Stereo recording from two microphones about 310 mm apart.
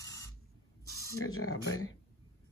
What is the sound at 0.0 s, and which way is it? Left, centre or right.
Spray, centre.